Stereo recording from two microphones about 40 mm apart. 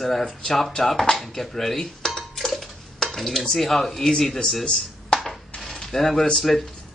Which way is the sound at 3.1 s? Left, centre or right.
Centre.